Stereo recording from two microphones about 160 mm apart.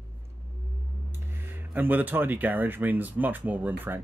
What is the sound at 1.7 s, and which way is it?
Speech, 10° right (ahead or behind).